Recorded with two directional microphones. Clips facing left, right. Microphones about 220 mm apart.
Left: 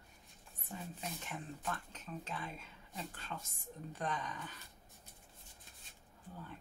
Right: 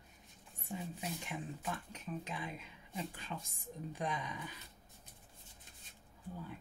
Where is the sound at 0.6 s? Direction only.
10° right (ahead or behind).